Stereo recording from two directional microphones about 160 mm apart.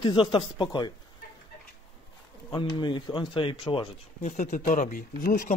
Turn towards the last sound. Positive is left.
turn(degrees=60)  # may be behind; listen again after turning